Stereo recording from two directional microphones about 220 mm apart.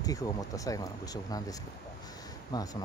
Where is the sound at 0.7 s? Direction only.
15° left (ahead or behind).